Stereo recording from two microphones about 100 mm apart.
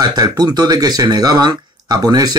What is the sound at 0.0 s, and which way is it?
Speech, 40° right (ahead or behind).